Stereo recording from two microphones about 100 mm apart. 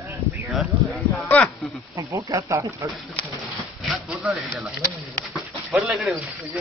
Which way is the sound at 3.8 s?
5° right (ahead or behind).